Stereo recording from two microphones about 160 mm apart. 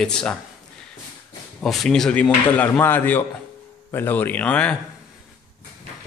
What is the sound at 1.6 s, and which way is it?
A man's voice, centre (ahead or behind).